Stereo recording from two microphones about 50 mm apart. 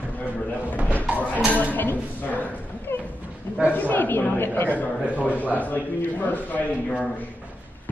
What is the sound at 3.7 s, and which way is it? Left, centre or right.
A man's voice, left.